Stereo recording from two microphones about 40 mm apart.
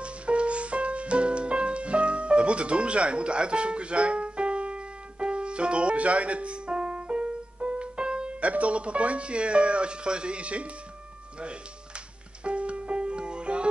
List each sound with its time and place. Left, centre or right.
0.0 s music: right